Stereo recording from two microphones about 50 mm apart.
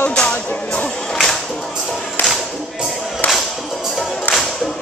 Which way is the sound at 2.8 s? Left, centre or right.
Centre.